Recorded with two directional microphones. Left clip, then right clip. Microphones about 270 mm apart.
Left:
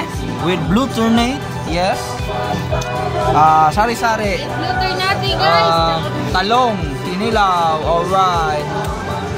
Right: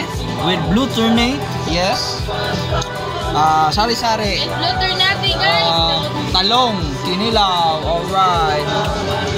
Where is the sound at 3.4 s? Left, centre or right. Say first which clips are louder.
Left 2 dB; centre.